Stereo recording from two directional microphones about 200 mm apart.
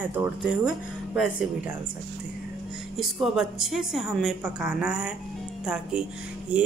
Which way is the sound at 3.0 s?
Centre (ahead or behind).